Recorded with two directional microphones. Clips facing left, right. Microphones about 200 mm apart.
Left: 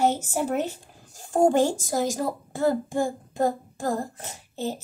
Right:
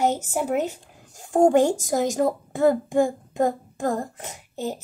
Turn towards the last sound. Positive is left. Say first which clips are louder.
# right 1 dB
turn(degrees=-15)  # may be behind; listen again after turning